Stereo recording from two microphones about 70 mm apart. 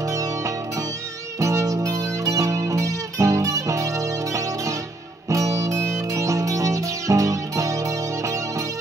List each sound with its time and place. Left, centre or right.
0.0 s music: right